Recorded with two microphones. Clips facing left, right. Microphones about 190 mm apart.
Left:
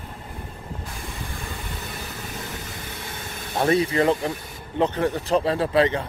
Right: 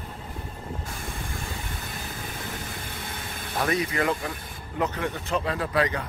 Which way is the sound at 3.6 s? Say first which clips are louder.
Left 6 dB; 30° left (ahead or behind).